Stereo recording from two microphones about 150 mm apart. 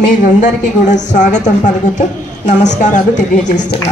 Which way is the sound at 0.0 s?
55° left (ahead or behind).